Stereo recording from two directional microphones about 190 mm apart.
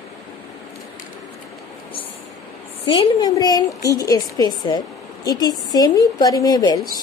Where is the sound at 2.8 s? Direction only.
30° left (ahead or behind).